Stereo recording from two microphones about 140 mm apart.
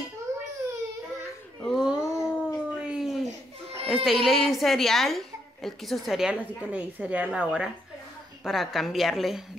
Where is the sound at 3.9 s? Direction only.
Centre (ahead or behind).